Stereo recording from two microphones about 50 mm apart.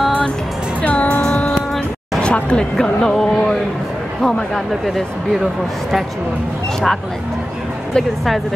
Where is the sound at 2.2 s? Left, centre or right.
Left; by 4.8 s centre.